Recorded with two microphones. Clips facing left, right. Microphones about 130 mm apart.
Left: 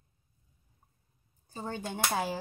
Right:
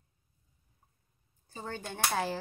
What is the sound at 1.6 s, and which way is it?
Speech, 15° left (ahead or behind).